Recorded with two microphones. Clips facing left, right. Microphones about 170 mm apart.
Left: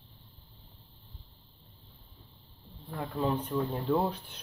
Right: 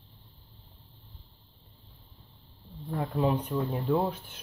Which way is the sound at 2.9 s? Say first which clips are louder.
Right 3 dB; 20° right (ahead or behind).